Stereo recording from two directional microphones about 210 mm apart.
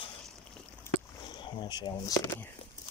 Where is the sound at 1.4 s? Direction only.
20° left (ahead or behind).